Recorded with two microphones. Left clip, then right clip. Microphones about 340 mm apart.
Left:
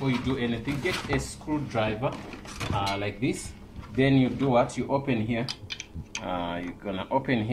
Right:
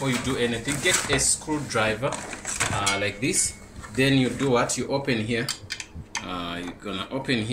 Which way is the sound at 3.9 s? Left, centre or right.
Centre.